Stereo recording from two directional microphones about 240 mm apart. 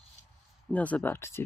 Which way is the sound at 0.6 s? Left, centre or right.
Centre.